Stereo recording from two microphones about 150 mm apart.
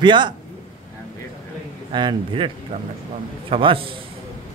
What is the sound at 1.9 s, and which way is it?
A man's voice, 30° right (ahead or behind).